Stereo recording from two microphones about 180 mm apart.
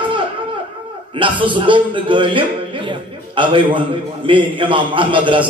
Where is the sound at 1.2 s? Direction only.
30° right (ahead or behind).